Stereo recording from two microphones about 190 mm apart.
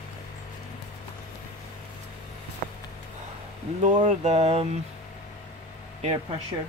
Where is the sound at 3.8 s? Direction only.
35° right (ahead or behind).